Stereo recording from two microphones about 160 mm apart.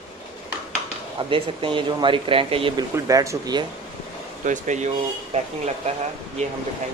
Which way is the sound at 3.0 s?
20° right (ahead or behind).